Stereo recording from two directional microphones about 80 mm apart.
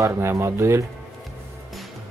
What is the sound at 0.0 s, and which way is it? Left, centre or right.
Speech, right.